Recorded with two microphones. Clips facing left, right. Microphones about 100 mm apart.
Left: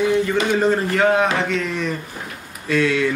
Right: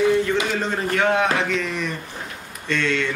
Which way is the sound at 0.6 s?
5° left (ahead or behind).